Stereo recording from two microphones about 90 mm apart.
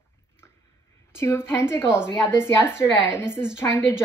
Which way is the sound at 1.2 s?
30° left (ahead or behind).